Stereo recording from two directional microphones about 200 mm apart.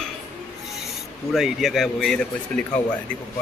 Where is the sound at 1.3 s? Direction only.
Centre (ahead or behind).